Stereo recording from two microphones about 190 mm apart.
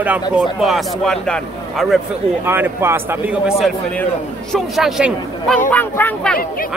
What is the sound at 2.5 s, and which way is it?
Speech, 10° right (ahead or behind).